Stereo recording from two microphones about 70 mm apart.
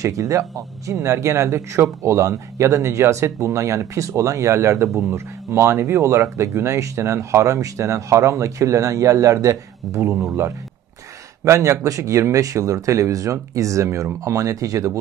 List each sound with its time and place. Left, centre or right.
0.0 s speech: right
11.4 s speech: right